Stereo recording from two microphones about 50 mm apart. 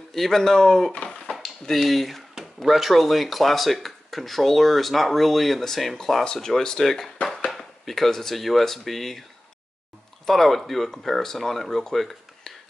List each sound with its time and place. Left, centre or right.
0.1 s speech: centre
0.9 s a sound: left
1.3 s speech: centre
10.2 s speech: centre